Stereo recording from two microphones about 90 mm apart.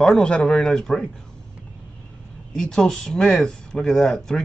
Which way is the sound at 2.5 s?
5° left (ahead or behind).